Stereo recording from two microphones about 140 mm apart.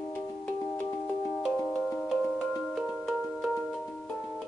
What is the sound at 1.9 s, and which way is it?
Music, centre (ahead or behind).